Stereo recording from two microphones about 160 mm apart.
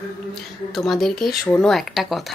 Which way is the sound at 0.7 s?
Centre (ahead or behind).